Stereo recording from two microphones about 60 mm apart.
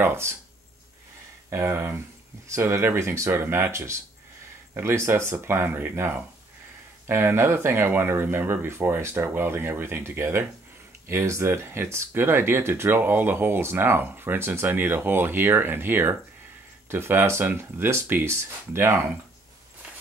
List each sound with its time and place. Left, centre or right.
0.0 s speech: right
1.5 s speech: right
3.7 s speech: right